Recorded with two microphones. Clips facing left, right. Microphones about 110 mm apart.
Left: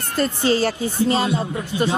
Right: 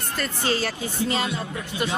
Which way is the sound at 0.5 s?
35° left (ahead or behind).